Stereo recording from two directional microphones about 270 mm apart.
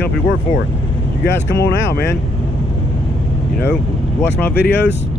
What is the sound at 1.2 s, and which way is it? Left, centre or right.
Speech, left.